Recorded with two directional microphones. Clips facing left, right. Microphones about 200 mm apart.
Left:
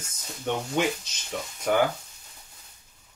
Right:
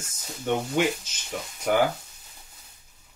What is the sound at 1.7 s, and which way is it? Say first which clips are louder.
Speech: right 1 dB; 5° right (ahead or behind).